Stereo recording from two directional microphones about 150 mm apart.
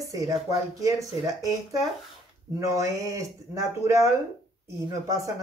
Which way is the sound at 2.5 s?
20° right (ahead or behind).